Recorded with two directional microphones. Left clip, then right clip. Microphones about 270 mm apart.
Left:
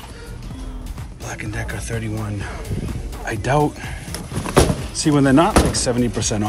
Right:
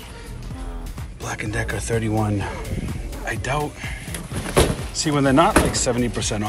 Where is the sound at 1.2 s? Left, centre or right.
Centre.